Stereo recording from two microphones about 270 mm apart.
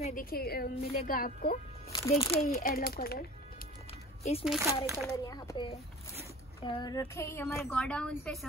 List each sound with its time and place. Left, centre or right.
0.0 s a woman's voice: left
1.9 s a woman's voice: centre
2.4 s a woman's voice: left
4.2 s speech: left
4.5 s speech: centre
5.1 s a woman's voice: centre